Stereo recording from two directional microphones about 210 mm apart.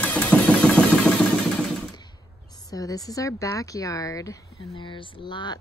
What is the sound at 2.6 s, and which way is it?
Speech, 15° left (ahead or behind).